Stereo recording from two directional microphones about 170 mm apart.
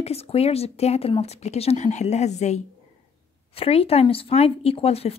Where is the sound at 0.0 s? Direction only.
35° left (ahead or behind).